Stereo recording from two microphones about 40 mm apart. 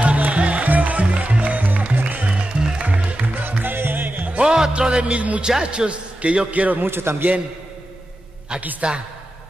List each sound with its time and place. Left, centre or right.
0.0 s music: right
2.2 s music: right
2.8 s music: right
4.4 s music: centre; by 5.4 s right
5.6 s a man's voice: right
6.5 s a man's voice: right
6.8 s a man's voice: right
8.8 s music: right